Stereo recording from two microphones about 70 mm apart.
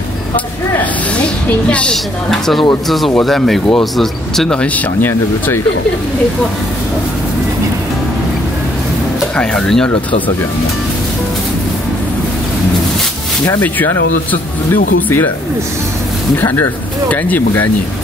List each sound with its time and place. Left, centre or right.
0.7 s a sound: centre
2.3 s speech: centre
9.4 s speech: centre
14.3 s speech: left
16.3 s speech: left